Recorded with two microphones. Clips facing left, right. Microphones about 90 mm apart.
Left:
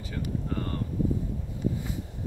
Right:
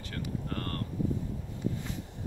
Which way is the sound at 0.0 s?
10° left (ahead or behind).